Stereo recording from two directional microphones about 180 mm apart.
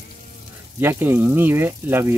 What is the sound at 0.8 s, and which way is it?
Speech, 10° right (ahead or behind).